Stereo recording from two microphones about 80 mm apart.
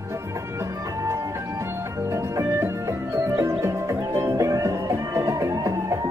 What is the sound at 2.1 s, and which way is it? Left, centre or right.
Music, right.